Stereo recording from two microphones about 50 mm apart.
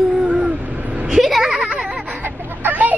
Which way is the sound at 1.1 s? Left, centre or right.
Centre.